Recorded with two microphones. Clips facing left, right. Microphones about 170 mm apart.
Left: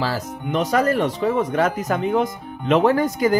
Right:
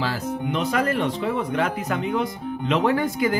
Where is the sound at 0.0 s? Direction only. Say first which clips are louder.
Left 1 dB; 40° left (ahead or behind).